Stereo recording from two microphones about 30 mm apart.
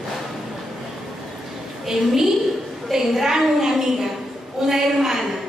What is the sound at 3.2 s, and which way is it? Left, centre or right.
Speech, centre.